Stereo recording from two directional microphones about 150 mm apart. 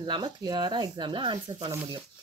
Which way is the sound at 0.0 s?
30° right (ahead or behind).